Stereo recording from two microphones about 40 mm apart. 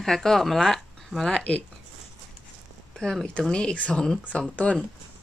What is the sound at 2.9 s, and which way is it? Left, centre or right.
Speech, centre.